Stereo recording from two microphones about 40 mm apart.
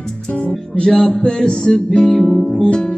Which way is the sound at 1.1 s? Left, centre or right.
Centre.